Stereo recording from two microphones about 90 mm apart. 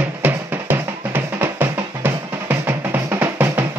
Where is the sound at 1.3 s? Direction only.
25° right (ahead or behind).